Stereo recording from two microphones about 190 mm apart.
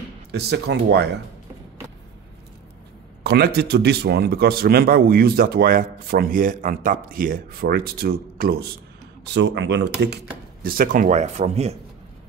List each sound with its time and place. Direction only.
0.3 s speech: 60° right (ahead or behind)
3.3 s speech: 55° right (ahead or behind)
9.2 s speech: 65° right (ahead or behind); by 11.7 s 35° right (ahead or behind)